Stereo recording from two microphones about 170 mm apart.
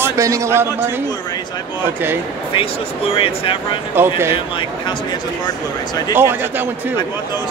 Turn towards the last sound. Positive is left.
turn(degrees=-10)  # may be behind; listen again after turning